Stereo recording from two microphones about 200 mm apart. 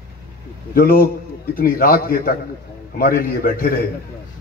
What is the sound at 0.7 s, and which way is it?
A man's voice, 50° left (ahead or behind).